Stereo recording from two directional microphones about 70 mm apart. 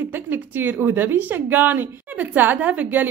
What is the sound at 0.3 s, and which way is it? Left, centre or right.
A woman's voice, right.